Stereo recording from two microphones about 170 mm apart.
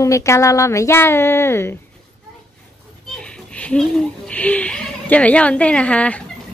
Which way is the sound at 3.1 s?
5° left (ahead or behind).